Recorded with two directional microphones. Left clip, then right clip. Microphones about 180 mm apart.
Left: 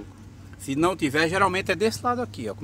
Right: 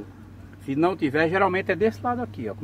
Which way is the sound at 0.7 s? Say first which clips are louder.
Even; 20° left (ahead or behind).